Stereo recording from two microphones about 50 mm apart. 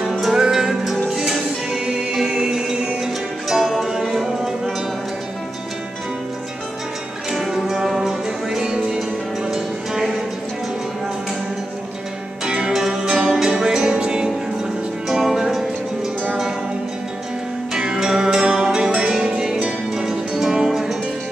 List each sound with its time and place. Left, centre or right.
0.2 s music: centre
7.2 s music: centre
12.4 s music: centre
15.3 s music: centre
17.7 s music: centre